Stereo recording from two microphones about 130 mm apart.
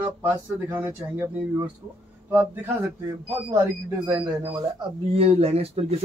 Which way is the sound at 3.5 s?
20° right (ahead or behind).